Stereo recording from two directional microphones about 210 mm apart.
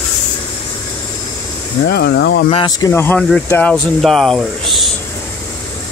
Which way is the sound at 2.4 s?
20° left (ahead or behind).